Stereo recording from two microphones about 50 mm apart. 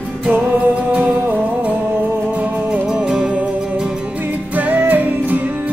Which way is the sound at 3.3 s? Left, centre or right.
Right.